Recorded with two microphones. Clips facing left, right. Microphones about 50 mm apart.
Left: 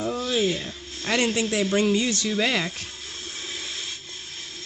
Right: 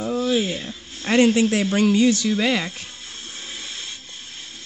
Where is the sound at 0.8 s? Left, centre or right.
Centre.